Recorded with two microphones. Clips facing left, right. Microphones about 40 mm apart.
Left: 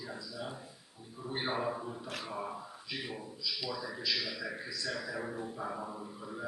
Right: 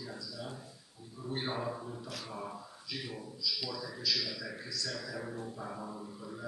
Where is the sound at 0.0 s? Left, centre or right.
Centre.